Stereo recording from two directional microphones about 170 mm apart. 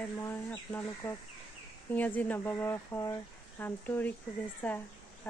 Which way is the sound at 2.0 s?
10° left (ahead or behind).